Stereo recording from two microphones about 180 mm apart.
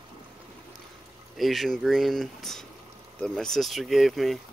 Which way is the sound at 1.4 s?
Centre (ahead or behind).